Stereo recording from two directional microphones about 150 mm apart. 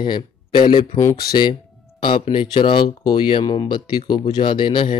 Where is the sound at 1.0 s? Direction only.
20° left (ahead or behind).